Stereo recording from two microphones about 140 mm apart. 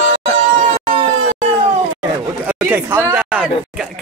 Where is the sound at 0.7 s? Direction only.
50° right (ahead or behind).